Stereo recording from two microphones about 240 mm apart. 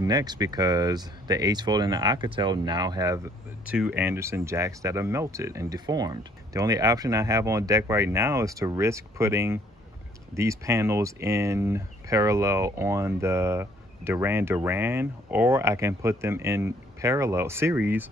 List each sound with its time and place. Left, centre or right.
0.0 s speech: centre
3.6 s speech: centre